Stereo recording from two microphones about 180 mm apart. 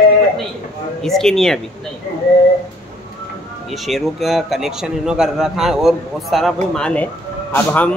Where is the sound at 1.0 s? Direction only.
Centre (ahead or behind).